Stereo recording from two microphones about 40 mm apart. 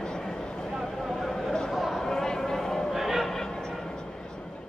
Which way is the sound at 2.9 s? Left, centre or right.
Centre.